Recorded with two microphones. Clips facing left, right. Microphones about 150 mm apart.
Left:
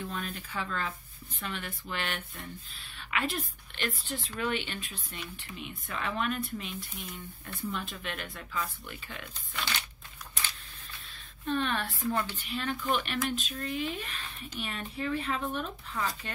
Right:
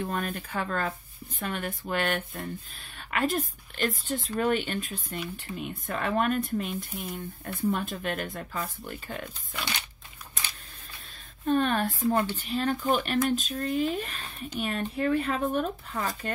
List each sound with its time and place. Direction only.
0.0 s speech: 50° right (ahead or behind)
7.7 s speech: 45° right (ahead or behind)
11.4 s speech: 45° right (ahead or behind)